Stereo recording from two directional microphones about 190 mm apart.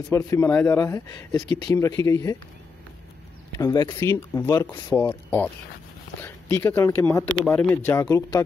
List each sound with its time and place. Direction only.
0.1 s speech: 15° left (ahead or behind)
3.5 s speech: 20° left (ahead or behind)